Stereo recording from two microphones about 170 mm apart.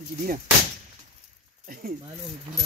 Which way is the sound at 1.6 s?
55° right (ahead or behind).